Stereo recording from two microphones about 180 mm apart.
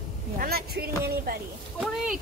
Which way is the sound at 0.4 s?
60° right (ahead or behind).